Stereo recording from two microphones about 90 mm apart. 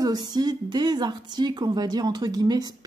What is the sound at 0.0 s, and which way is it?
A woman's voice, 50° right (ahead or behind).